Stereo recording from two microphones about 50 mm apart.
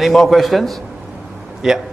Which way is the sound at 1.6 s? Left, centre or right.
Centre.